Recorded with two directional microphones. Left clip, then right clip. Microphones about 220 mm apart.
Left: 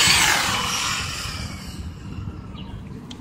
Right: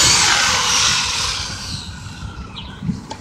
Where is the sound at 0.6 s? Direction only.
15° right (ahead or behind).